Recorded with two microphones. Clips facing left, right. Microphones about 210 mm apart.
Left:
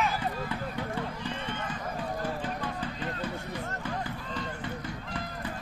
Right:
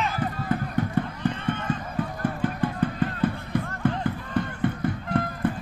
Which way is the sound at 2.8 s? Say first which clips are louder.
Right 10 dB; 55° right (ahead or behind).